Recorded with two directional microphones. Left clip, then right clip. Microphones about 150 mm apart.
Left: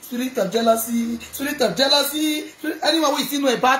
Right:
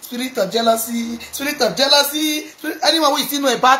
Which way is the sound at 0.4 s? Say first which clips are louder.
Right 2 dB; 10° left (ahead or behind).